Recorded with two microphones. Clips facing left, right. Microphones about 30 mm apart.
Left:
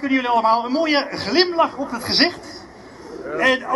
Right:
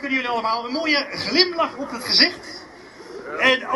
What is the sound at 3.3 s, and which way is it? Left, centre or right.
Speech, centre.